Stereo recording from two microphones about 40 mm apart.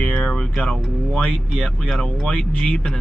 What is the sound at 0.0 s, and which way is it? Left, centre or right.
Music, left.